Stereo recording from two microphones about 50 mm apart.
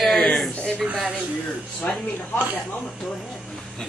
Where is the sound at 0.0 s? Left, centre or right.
Centre.